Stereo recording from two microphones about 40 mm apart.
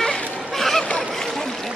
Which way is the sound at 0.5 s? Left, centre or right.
Centre.